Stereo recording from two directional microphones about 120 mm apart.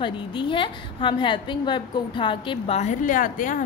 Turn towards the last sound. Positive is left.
turn(degrees=90)